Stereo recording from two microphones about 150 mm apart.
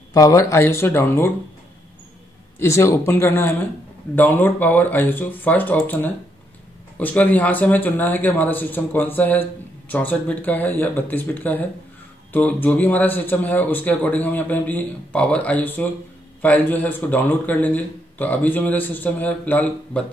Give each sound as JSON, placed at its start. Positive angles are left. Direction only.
{"t": 0.1, "sound": "speech", "side_deg": 20}
{"t": 2.6, "sound": "speech", "side_deg": 20}